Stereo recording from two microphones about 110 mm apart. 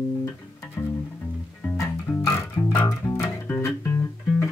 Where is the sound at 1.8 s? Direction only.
25° left (ahead or behind).